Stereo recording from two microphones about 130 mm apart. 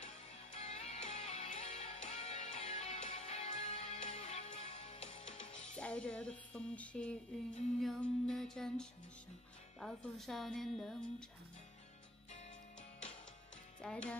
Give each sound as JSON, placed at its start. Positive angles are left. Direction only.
{"t": 0.0, "sound": "music", "side_deg": 55}
{"t": 5.8, "sound": "music", "side_deg": 10}
{"t": 7.8, "sound": "speech", "side_deg": 5}
{"t": 13.7, "sound": "speech", "side_deg": 10}